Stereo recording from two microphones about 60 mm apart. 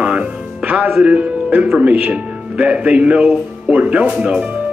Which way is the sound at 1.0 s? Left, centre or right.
Right.